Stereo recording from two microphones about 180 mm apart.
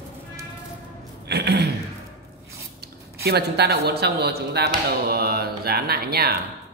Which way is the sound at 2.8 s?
65° right (ahead or behind).